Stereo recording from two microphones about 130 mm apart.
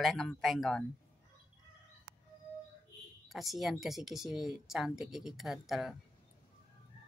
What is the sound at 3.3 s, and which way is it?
Speech, centre (ahead or behind).